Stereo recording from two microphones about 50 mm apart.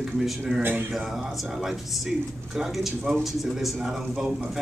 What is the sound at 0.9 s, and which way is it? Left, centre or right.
A man's voice, centre.